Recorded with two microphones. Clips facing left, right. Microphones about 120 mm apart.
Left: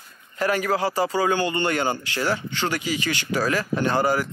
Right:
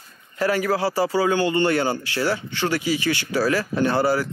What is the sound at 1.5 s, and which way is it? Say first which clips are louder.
Speech: right 3 dB; 15° left (ahead or behind).